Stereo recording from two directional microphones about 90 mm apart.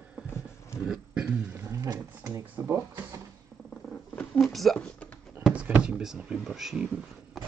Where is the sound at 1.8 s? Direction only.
40° right (ahead or behind).